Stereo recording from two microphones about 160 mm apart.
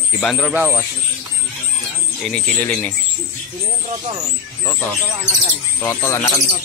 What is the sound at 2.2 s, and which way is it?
Speech, 5° left (ahead or behind).